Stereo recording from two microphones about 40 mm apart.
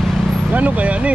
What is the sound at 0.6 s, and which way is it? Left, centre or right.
Vehicle, right.